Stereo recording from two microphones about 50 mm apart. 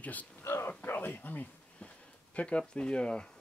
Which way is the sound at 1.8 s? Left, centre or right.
Left.